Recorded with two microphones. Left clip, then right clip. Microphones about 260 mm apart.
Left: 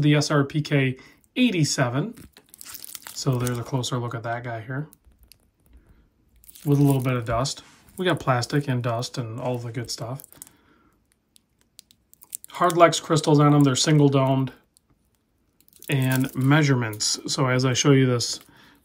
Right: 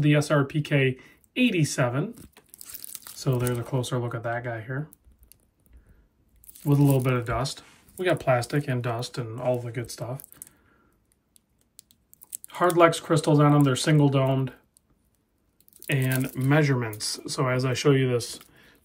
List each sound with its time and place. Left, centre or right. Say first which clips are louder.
0.0 s speech: left 1 dB; centre
6.5 s speech: left 1 dB; centre
12.2 s speech: left 2 dB; centre
15.7 s a sound: left 1 dB; centre
16.4 s speech: left 2 dB; centre